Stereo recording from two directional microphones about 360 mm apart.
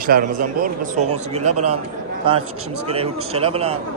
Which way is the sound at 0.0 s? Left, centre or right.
Right.